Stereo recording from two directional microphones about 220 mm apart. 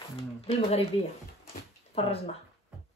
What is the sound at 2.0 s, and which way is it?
Speech, 25° left (ahead or behind).